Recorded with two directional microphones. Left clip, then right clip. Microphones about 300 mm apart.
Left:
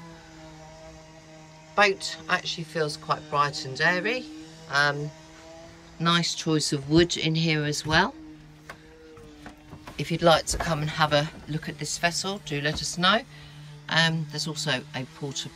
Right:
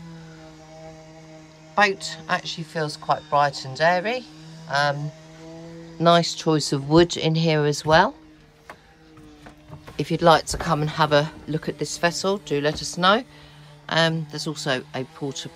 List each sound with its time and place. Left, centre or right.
1.8 s speech: centre
5.9 s speech: centre
9.9 s speech: centre